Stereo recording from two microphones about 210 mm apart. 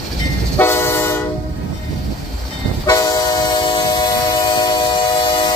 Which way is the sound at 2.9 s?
15° left (ahead or behind).